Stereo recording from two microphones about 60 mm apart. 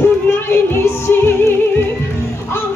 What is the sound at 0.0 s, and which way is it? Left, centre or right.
Music, left.